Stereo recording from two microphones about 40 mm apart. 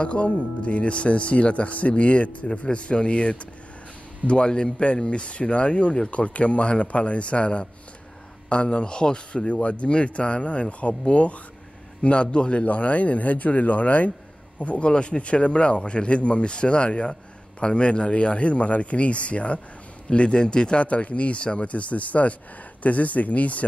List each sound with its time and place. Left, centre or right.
0.0 s a man's voice: left
12.6 s a man's voice: left
20.8 s a man's voice: left